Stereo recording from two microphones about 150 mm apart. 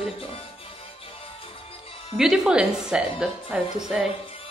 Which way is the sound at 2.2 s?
5° right (ahead or behind).